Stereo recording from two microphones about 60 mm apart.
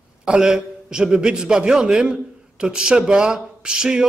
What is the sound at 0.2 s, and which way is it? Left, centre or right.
Speech, centre.